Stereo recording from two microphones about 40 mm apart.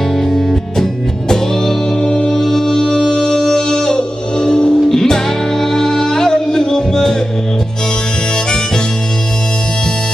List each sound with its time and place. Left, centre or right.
1.3 s music: centre